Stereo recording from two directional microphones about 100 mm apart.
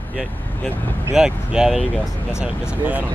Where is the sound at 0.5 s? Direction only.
15° left (ahead or behind).